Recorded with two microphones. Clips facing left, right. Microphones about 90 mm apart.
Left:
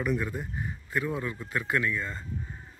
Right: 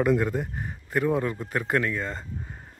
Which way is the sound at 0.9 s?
50° right (ahead or behind).